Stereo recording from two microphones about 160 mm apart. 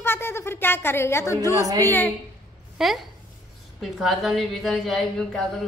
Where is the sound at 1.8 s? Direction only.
10° left (ahead or behind).